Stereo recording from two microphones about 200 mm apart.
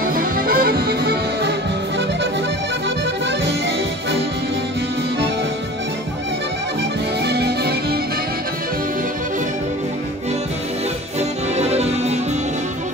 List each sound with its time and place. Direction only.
0.0 s music: 45° right (ahead or behind)
7.2 s music: 55° right (ahead or behind)
11.1 s music: 35° right (ahead or behind)